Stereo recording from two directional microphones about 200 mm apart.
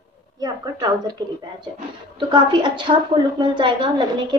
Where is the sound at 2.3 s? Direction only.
25° right (ahead or behind).